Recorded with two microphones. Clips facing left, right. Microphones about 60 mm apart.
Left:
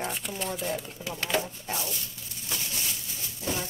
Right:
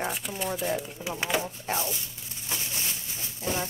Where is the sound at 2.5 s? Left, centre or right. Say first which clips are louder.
Even; right.